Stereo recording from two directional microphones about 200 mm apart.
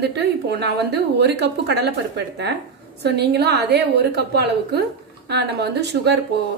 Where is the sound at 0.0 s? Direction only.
55° right (ahead or behind).